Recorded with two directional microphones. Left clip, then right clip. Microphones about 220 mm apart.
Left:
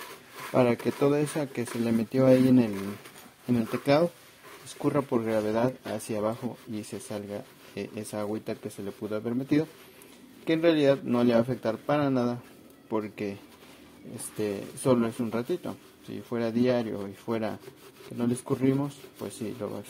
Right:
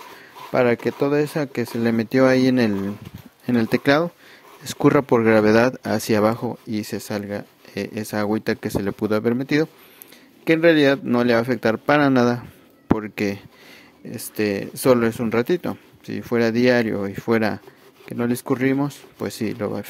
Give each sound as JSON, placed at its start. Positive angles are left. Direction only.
{"t": 0.5, "sound": "speech", "side_deg": -30}
{"t": 3.7, "sound": "speech", "side_deg": -35}
{"t": 10.4, "sound": "speech", "side_deg": -35}